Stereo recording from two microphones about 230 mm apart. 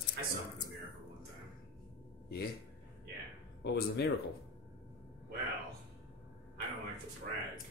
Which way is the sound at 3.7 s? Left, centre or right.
Left.